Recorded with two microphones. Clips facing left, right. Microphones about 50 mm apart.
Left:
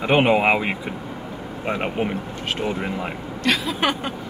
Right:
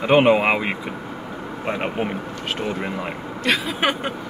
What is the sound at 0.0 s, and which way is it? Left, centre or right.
Speech, centre.